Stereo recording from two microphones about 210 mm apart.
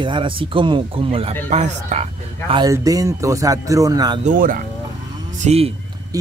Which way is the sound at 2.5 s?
15° right (ahead or behind).